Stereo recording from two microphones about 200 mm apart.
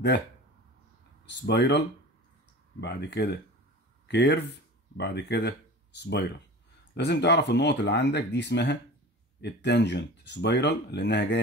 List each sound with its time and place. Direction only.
1.2 s speech: 60° left (ahead or behind)
2.8 s speech: 60° left (ahead or behind)